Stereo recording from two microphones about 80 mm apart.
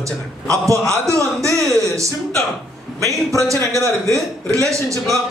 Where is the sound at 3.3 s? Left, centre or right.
Right.